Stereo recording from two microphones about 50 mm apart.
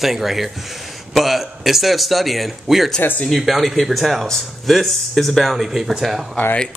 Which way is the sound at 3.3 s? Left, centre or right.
Centre.